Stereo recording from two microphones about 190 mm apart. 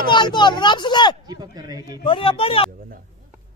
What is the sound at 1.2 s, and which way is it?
Speech, 20° right (ahead or behind).